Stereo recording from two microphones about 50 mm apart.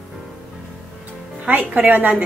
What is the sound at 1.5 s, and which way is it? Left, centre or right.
Speech, right.